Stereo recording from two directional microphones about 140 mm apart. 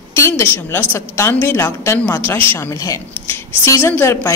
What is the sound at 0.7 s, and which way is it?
A woman's voice, 20° left (ahead or behind).